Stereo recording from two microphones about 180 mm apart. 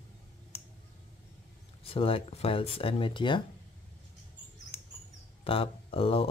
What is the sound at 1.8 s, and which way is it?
Speech, 30° left (ahead or behind).